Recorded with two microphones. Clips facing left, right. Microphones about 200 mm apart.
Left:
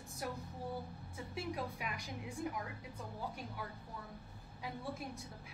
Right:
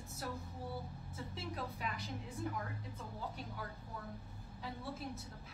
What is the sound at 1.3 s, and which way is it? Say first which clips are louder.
A woman's voice: left 4 dB; 10° left (ahead or behind).